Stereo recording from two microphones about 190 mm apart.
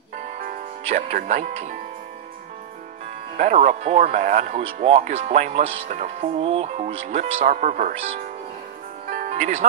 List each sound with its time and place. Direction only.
0.4 s speech: 45° right (ahead or behind)
3.3 s speech: 40° right (ahead or behind)
5.9 s speech: 40° right (ahead or behind)
9.1 s music: 40° right (ahead or behind)